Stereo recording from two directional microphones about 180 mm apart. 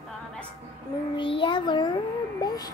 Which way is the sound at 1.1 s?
30° left (ahead or behind).